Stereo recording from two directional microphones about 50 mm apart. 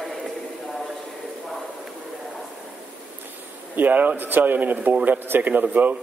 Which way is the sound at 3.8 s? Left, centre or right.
Right.